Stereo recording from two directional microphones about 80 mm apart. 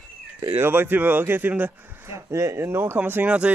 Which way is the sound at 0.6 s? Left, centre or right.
Right.